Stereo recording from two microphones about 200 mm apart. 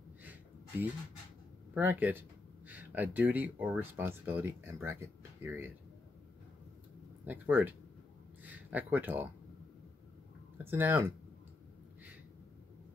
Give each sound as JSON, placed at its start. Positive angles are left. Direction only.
{"t": 0.2, "sound": "a sound", "side_deg": -10}
{"t": 1.7, "sound": "speech", "side_deg": -10}
{"t": 7.2, "sound": "speech", "side_deg": -10}
{"t": 10.6, "sound": "speech", "side_deg": -10}